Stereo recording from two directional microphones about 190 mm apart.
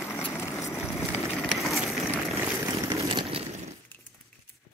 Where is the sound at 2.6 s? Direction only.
15° right (ahead or behind).